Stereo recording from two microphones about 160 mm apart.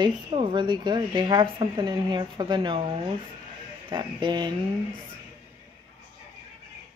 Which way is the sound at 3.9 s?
30° right (ahead or behind).